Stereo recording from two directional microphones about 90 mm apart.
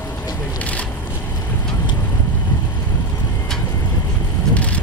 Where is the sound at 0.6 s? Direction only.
15° left (ahead or behind).